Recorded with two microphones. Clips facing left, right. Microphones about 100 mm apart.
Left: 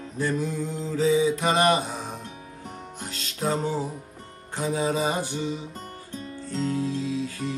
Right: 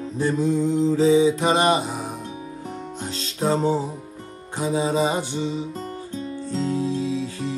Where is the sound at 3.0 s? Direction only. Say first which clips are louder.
Right 4 dB; 30° right (ahead or behind).